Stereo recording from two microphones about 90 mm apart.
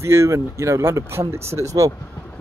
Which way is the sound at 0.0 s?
30° right (ahead or behind).